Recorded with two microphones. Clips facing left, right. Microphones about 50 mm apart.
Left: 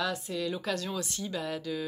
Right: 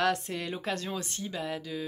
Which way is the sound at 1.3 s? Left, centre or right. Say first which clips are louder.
Left 1 dB; centre.